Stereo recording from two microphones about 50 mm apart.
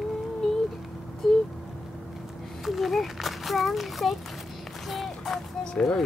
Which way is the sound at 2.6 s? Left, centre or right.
Centre.